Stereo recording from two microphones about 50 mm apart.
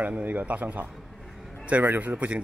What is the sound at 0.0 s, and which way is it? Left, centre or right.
Speech, right.